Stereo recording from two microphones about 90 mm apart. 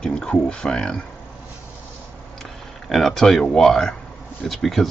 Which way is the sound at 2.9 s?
Centre (ahead or behind).